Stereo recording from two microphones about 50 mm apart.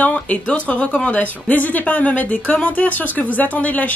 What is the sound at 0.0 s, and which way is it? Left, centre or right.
Speech, left.